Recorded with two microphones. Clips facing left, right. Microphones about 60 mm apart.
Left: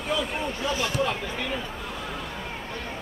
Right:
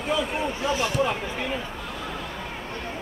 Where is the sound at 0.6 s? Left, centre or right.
Centre.